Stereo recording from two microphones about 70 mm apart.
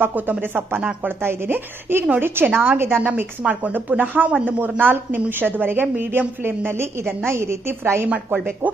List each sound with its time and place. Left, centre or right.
0.0 s a woman's voice: right